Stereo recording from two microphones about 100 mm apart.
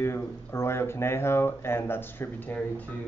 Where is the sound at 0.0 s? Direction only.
25° left (ahead or behind).